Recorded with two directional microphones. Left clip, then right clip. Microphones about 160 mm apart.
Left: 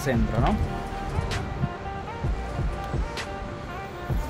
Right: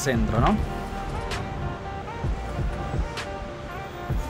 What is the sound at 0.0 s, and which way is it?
Speech, 25° right (ahead or behind).